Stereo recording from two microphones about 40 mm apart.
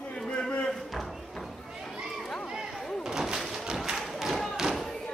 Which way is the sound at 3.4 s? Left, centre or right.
Centre.